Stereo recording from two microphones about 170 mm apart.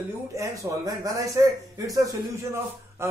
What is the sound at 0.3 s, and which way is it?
Speech, 20° right (ahead or behind).